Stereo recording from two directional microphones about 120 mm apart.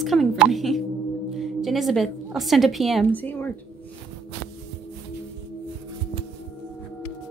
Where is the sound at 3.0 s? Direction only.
15° left (ahead or behind).